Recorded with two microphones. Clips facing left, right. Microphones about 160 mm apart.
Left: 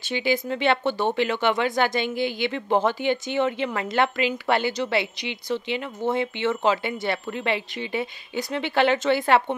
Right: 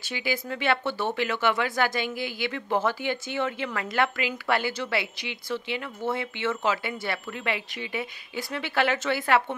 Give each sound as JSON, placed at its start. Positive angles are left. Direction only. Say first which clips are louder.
{"t": 0.0, "sound": "speech", "louder": "left 6 dB", "side_deg": 25}